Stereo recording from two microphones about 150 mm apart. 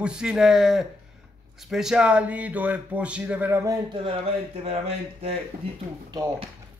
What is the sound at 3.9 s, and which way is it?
Speech, 40° right (ahead or behind).